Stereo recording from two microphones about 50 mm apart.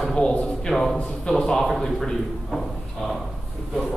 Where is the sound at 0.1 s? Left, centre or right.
Left.